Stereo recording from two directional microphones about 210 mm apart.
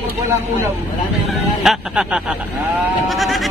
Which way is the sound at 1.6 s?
5° right (ahead or behind).